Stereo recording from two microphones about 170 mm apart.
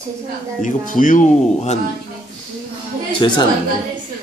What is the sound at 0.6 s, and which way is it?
Speech, 50° left (ahead or behind).